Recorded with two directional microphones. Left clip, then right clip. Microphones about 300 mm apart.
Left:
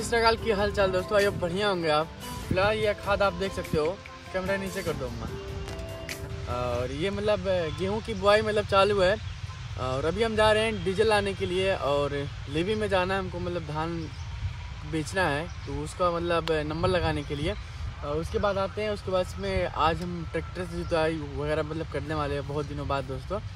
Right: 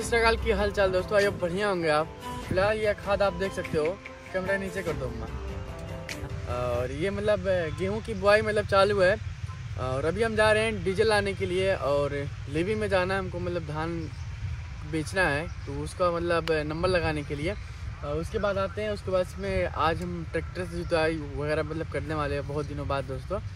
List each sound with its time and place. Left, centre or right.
0.1 s speech: centre
6.0 s speech: centre
15.0 s speech: centre